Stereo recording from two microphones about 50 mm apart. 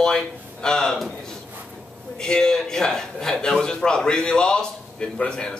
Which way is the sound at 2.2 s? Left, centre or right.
Centre.